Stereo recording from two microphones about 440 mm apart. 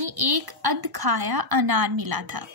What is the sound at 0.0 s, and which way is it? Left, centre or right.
A woman's voice, right.